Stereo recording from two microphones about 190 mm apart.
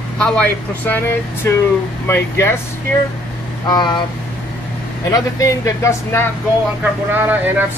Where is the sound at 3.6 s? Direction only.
20° left (ahead or behind).